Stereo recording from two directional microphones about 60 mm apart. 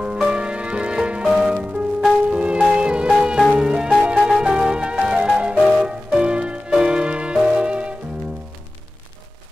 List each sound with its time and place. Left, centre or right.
0.2 s music: centre
1.2 s music: centre
1.5 s music: centre